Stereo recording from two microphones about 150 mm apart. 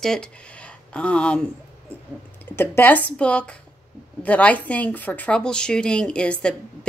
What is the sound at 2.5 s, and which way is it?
A woman's voice, 15° left (ahead or behind).